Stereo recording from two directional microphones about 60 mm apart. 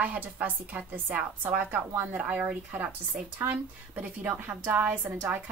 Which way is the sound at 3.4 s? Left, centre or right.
Right.